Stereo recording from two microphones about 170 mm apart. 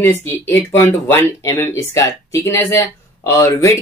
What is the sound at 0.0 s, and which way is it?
Speech, 15° left (ahead or behind).